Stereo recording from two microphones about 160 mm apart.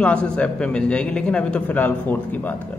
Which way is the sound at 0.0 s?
5° left (ahead or behind).